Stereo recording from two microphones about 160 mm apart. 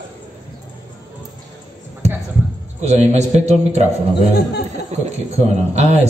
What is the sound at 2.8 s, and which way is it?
A man's voice, 45° right (ahead or behind).